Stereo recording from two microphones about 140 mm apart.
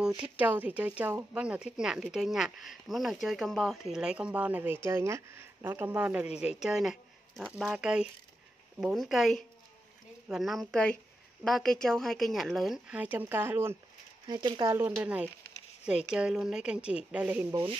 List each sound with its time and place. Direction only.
0.2 s speech: 10° right (ahead or behind)
14.2 s speech: 30° right (ahead or behind)
14.7 s speech: 15° right (ahead or behind)